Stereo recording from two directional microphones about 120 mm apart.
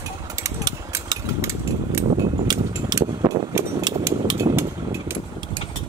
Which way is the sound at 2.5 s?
35° right (ahead or behind).